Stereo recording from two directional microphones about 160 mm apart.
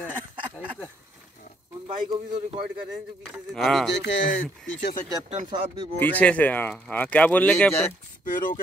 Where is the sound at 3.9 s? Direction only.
90° left.